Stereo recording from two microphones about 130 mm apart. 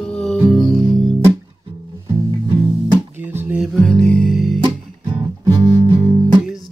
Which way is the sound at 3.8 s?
5° left (ahead or behind).